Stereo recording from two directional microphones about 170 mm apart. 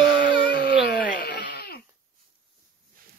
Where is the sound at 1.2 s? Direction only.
65° left (ahead or behind).